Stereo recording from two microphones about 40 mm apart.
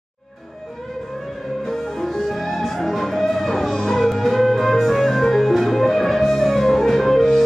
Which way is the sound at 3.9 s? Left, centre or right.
Centre.